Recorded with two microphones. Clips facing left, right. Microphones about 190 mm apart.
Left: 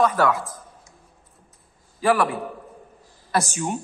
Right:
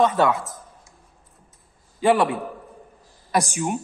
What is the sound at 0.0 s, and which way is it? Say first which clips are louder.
Speech: right 1 dB; 20° right (ahead or behind).